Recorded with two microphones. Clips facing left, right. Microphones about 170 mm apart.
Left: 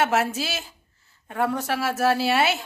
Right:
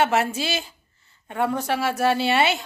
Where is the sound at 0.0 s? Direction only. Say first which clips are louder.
Right 1 dB; centre (ahead or behind).